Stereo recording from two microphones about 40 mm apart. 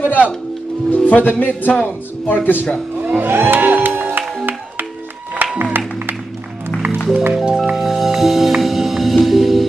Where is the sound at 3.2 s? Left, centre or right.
Right.